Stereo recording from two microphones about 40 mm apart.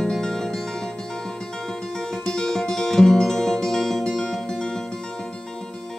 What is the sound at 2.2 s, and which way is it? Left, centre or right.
Music, centre.